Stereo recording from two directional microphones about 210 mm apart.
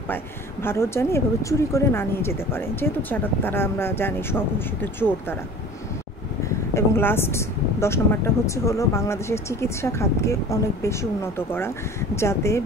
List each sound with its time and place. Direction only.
0.1 s speech: 10° left (ahead or behind)
6.7 s speech: 10° left (ahead or behind)